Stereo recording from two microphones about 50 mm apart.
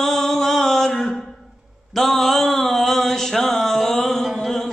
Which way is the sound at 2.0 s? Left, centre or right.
Centre.